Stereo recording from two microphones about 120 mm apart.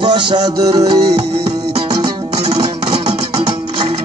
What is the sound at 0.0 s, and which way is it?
Music, 40° right (ahead or behind).